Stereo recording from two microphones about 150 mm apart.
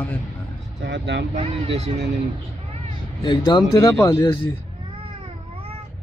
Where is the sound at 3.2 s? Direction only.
30° left (ahead or behind).